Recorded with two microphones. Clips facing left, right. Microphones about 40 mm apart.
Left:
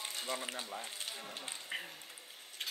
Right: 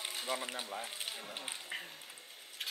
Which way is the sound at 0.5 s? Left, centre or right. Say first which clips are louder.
Right 2 dB; centre.